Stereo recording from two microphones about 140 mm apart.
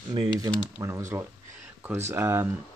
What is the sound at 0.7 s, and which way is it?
Speech, 20° right (ahead or behind).